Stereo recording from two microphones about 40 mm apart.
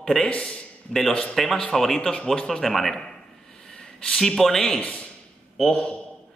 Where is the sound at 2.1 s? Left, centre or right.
Left.